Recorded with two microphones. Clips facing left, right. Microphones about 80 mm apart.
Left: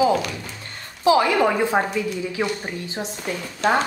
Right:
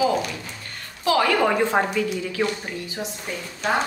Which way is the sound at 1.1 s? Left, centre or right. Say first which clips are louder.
Left 2 dB; centre.